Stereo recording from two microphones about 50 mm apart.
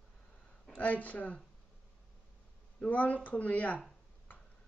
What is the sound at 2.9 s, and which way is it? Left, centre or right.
Speech, left.